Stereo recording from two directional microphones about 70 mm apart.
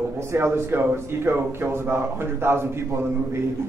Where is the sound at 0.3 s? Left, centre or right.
Right.